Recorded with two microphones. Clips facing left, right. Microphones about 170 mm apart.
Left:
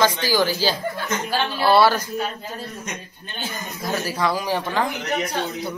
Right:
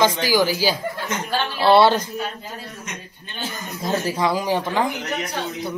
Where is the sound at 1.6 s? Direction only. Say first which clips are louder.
Right 2 dB; 25° right (ahead or behind).